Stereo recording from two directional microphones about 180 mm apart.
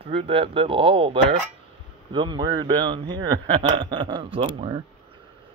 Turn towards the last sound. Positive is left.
turn(degrees=-30)  # may be behind; listen again after turning